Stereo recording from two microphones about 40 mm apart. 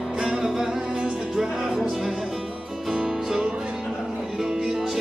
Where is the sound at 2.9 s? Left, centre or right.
Centre.